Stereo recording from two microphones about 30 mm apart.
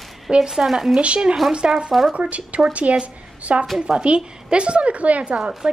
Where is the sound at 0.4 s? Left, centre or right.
Centre.